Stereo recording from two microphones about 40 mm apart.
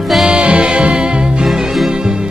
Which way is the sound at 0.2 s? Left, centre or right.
Right.